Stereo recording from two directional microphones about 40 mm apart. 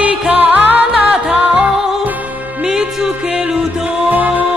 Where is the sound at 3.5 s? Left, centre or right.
Centre.